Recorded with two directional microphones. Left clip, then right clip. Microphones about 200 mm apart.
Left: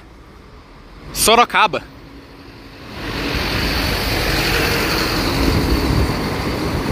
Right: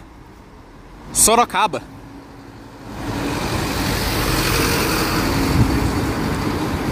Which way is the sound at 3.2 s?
65° right (ahead or behind).